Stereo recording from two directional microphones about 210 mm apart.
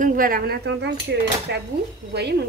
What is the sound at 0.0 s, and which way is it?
A woman's voice, 40° right (ahead or behind).